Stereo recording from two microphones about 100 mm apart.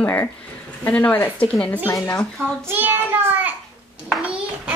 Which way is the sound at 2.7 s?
20° right (ahead or behind).